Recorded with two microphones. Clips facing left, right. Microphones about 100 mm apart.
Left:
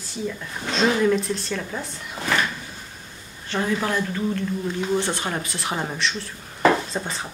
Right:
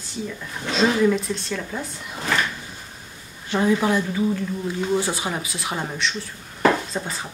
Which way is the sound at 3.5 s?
15° right (ahead or behind).